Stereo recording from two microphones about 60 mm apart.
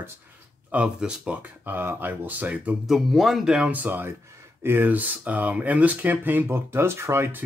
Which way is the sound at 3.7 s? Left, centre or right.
Right.